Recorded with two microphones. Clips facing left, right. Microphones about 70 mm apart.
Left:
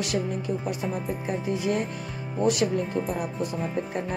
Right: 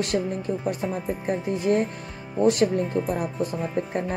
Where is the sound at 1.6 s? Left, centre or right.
Right.